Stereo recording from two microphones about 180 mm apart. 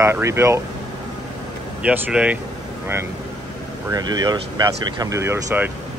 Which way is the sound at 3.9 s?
20° right (ahead or behind).